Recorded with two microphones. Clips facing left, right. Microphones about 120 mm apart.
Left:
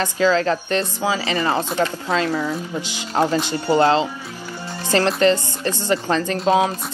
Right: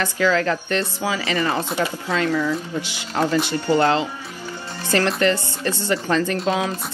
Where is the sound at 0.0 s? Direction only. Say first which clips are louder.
Left 2 dB; 20° left (ahead or behind).